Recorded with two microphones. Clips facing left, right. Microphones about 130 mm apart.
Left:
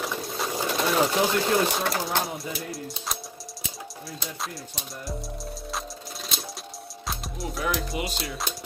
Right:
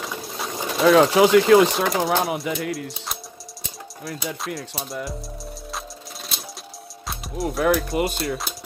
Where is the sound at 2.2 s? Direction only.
65° right (ahead or behind).